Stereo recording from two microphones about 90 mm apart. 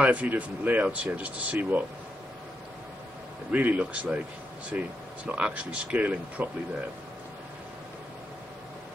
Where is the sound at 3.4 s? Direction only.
15° right (ahead or behind).